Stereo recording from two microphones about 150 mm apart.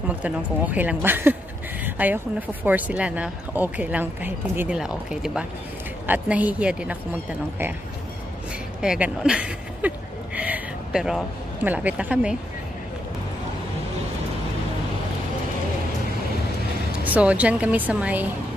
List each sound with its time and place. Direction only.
0.1 s speech: 10° right (ahead or behind)
8.8 s speech: 5° right (ahead or behind)
17.0 s speech: 10° right (ahead or behind)